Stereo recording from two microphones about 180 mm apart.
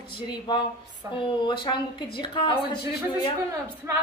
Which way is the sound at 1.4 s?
25° left (ahead or behind).